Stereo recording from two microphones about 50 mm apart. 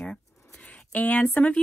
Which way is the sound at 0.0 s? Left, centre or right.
Left.